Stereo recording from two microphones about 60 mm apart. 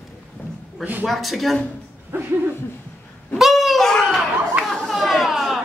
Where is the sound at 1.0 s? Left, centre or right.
Centre.